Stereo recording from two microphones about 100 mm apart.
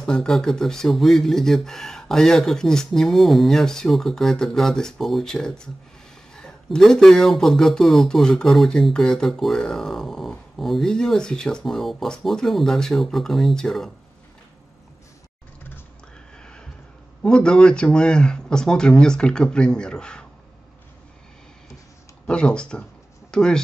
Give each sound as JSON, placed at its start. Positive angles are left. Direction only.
{"t": 0.0, "sound": "speech", "side_deg": 5}
{"t": 16.3, "sound": "a sound", "side_deg": 10}
{"t": 17.2, "sound": "speech", "side_deg": 10}
{"t": 22.2, "sound": "speech", "side_deg": 10}